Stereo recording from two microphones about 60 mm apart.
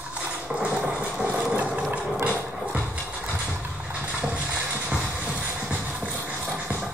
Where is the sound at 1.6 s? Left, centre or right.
Right.